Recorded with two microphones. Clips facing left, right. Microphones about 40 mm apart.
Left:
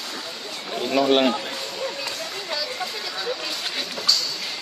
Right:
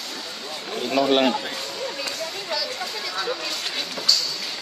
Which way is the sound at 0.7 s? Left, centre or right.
Centre.